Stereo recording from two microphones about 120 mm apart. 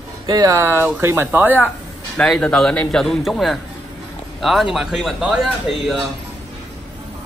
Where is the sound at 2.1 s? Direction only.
5° left (ahead or behind).